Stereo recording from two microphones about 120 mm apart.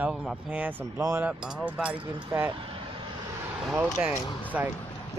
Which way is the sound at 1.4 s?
10° right (ahead or behind).